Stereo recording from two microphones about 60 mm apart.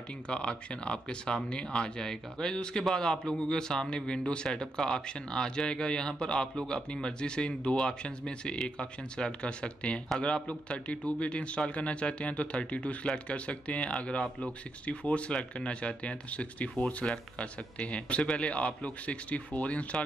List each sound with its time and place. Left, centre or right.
0.3 s a man's voice: centre